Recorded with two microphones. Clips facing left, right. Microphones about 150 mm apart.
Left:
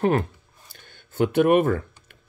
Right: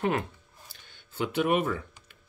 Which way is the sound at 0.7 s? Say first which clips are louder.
Left 5 dB; 50° left (ahead or behind).